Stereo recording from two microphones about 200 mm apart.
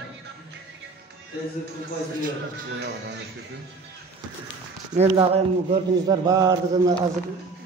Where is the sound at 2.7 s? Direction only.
60° right (ahead or behind).